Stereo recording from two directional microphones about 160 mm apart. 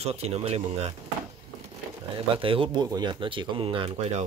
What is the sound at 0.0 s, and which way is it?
Speech, 40° right (ahead or behind).